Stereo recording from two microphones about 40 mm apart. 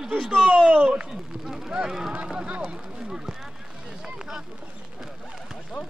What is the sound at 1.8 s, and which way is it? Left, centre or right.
Speech, centre.